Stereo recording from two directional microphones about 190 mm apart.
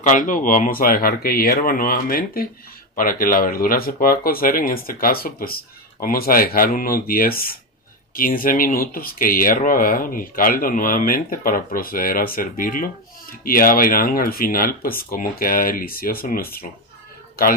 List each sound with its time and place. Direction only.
0.0 s speech: 40° left (ahead or behind)